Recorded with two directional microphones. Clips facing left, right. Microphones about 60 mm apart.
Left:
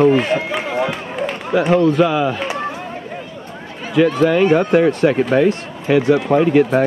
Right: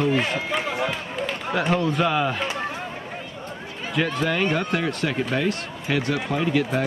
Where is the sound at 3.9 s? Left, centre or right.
Centre.